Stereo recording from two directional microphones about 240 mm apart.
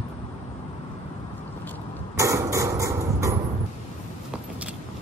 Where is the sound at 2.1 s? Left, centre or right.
Centre.